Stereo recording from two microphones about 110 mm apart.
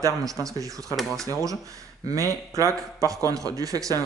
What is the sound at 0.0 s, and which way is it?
Speech, 30° right (ahead or behind).